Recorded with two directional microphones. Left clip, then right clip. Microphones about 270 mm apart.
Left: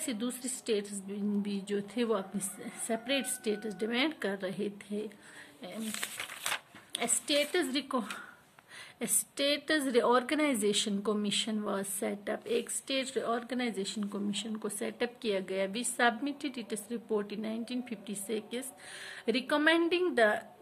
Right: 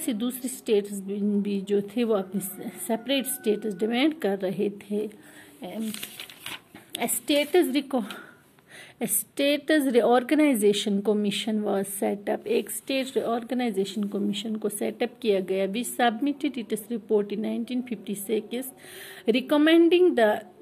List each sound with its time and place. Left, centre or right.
0.0 s a woman's voice: centre